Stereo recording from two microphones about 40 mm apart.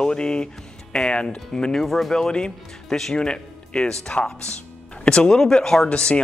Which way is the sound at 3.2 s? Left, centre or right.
Left.